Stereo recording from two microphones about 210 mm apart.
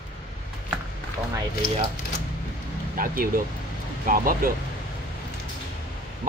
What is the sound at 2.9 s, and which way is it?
Speech, 40° right (ahead or behind).